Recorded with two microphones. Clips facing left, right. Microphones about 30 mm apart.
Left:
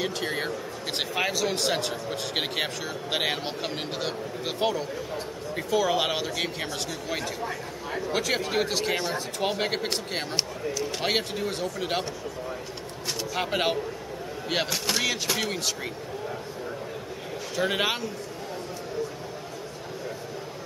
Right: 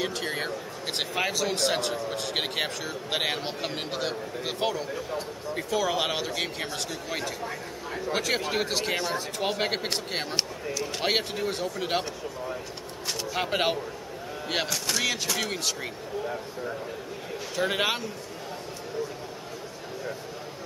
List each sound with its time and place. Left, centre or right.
0.0 s speech: centre
14.7 s speech: centre
15.5 s speech: centre
17.6 s speech: centre